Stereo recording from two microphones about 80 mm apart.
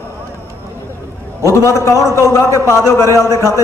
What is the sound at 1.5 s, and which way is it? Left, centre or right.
A man's voice, left.